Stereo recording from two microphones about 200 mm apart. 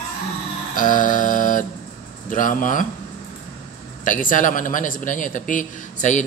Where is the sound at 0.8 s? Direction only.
40° left (ahead or behind).